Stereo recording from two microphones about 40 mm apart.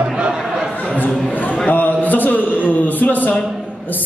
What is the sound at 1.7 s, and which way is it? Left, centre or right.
A man's voice, left.